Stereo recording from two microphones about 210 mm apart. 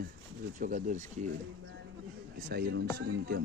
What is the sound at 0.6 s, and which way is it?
Speech, 35° right (ahead or behind).